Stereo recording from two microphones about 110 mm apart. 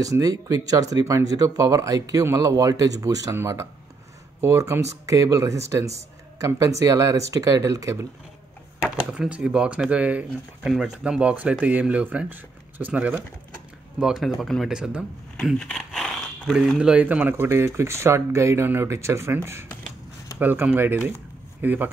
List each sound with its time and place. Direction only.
0.0 s speech: 35° right (ahead or behind)
9.1 s speech: 10° right (ahead or behind)
15.6 s a sound: 5° left (ahead or behind)
16.5 s speech: 5° right (ahead or behind)